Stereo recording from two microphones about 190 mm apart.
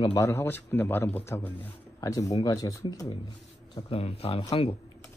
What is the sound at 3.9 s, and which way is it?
Speech, 30° left (ahead or behind).